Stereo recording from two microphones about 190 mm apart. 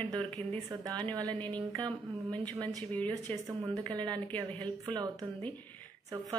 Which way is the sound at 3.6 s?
20° right (ahead or behind).